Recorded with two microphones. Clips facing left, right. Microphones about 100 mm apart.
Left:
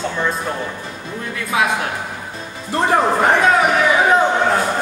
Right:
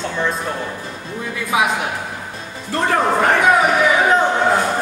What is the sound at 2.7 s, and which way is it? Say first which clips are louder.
Speech: left 1 dB; 20° left (ahead or behind).